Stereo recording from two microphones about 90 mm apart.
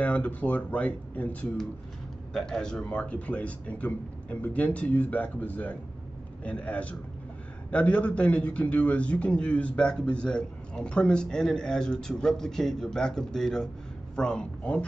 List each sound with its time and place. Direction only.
0.0 s a man's voice: 15° left (ahead or behind)